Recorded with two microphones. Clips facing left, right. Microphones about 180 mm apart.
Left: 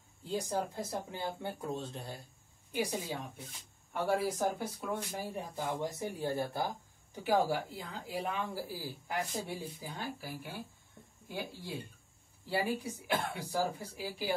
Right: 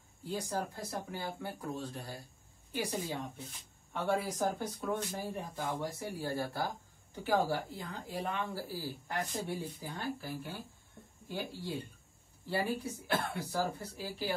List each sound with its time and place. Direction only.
0.3 s speech: 20° left (ahead or behind)